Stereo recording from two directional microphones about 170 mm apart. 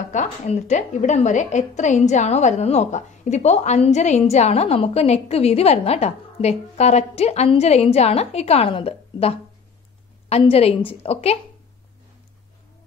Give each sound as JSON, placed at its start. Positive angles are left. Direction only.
{"t": 0.1, "sound": "a woman's voice", "side_deg": 45}